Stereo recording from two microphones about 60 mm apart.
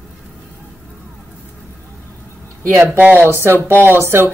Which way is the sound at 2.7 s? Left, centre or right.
Right.